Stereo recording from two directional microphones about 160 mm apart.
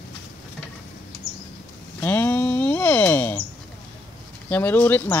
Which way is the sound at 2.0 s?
10° left (ahead or behind).